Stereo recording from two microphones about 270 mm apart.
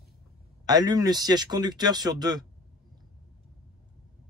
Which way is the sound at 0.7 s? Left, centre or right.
Centre.